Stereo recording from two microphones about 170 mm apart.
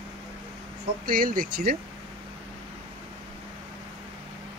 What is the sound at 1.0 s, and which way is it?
Speech, 55° right (ahead or behind).